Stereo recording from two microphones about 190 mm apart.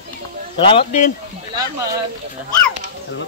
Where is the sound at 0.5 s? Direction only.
25° left (ahead or behind).